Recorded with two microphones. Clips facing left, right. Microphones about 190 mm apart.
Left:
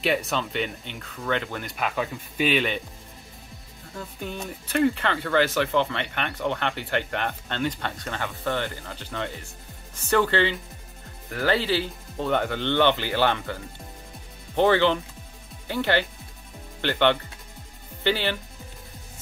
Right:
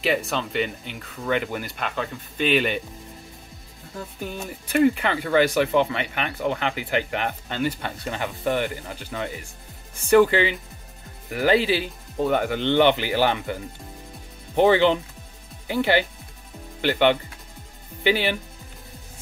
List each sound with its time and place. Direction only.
0.0 s speech: centre (ahead or behind)
1.7 s speech: 5° left (ahead or behind)
3.9 s speech: 5° right (ahead or behind)